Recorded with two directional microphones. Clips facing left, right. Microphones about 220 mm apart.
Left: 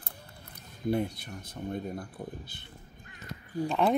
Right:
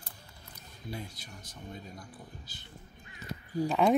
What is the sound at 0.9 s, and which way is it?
Speech, 60° left (ahead or behind).